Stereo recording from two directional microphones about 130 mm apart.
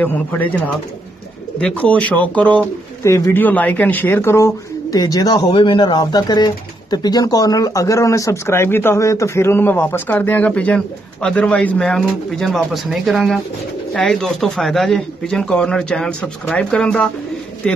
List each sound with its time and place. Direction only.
0.0 s speech: 15° left (ahead or behind)
1.6 s speech: 10° left (ahead or behind)
3.0 s a man's voice: 20° left (ahead or behind)